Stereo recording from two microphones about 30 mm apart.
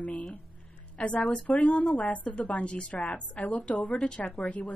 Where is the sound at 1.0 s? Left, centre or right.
Left.